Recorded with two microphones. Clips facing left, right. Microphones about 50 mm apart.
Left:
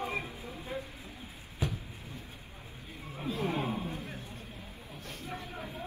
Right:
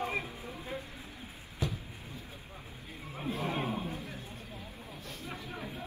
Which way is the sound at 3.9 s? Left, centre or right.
Left.